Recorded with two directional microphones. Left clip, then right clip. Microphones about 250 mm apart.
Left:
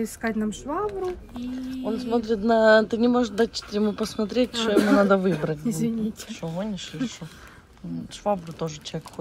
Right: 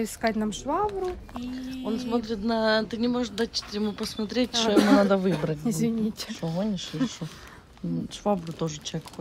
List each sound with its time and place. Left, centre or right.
0.0 s speech: centre
5.7 s speech: centre
6.2 s speech: centre
8.2 s speech: centre